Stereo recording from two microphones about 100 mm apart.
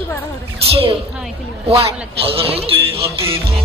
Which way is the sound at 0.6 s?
75° right (ahead or behind).